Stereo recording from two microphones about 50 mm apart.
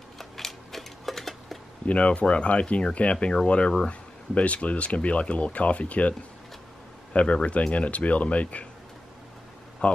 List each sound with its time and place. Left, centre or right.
0.2 s typewriter: centre
1.9 s speech: left
7.2 s speech: left